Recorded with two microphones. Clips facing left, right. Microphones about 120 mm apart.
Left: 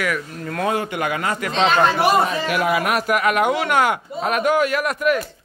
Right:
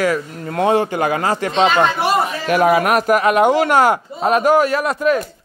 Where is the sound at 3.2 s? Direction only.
30° right (ahead or behind).